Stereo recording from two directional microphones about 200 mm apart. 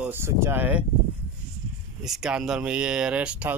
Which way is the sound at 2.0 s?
Centre (ahead or behind).